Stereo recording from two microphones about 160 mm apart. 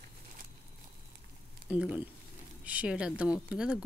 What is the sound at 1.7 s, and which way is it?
A woman's voice, 5° right (ahead or behind).